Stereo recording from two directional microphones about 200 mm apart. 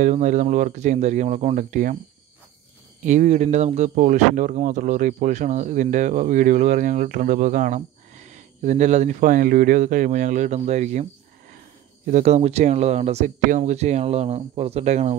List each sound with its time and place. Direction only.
0.0 s speech: 40° right (ahead or behind)
3.0 s speech: 35° right (ahead or behind)
12.1 s speech: 35° right (ahead or behind)